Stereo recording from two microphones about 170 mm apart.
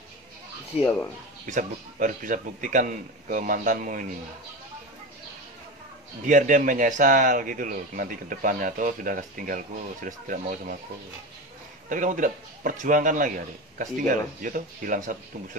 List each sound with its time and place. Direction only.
0.8 s speech: 10° left (ahead or behind)
1.4 s speech: 50° right (ahead or behind)
6.2 s speech: 50° right (ahead or behind)
11.9 s speech: 50° right (ahead or behind)